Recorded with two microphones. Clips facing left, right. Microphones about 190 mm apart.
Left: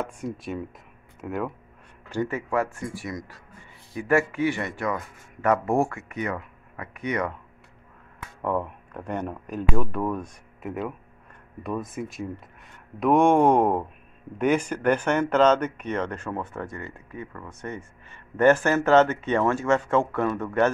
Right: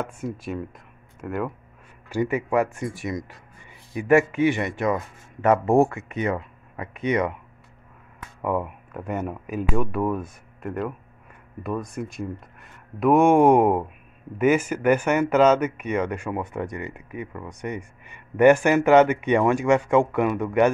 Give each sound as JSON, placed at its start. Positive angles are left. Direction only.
{"t": 0.0, "sound": "speech", "side_deg": 0}
{"t": 2.0, "sound": "speech", "side_deg": -10}
{"t": 8.4, "sound": "speech", "side_deg": -10}